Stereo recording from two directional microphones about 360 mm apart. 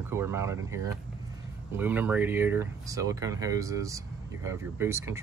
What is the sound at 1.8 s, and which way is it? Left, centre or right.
Speech, centre.